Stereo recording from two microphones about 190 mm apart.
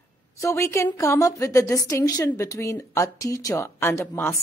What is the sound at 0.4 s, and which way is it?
A woman's voice, 15° left (ahead or behind).